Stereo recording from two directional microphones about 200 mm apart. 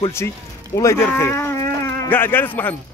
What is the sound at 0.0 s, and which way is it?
Speech, 15° left (ahead or behind).